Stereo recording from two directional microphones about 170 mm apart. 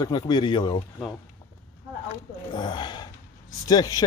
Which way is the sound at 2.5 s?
25° left (ahead or behind).